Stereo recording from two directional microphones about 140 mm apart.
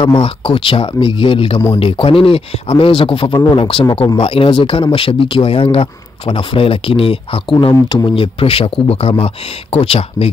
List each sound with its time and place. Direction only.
0.0 s speech: 40° left (ahead or behind)